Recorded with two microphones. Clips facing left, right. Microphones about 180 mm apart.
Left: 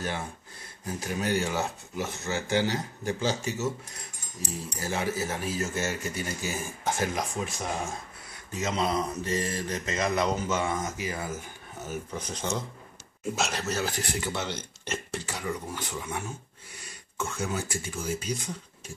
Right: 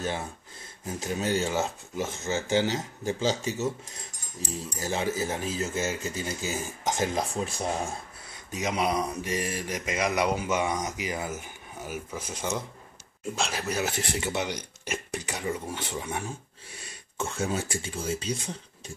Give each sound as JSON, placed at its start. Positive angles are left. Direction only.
{"t": 0.8, "sound": "speech", "side_deg": -20}
{"t": 4.9, "sound": "speech", "side_deg": -20}
{"t": 7.3, "sound": "speech", "side_deg": -35}
{"t": 8.5, "sound": "speech", "side_deg": -15}